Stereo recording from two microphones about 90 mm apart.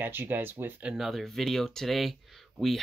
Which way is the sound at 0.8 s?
Centre (ahead or behind).